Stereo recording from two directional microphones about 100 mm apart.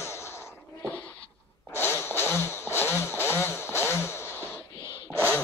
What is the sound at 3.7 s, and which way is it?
Music, 25° left (ahead or behind).